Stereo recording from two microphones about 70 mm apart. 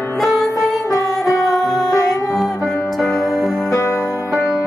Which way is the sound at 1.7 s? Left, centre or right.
Centre.